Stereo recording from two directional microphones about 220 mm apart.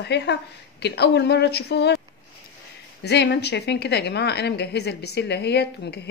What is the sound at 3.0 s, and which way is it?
Speech, 50° left (ahead or behind).